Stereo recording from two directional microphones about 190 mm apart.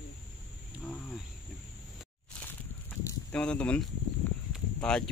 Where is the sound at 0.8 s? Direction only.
5° left (ahead or behind).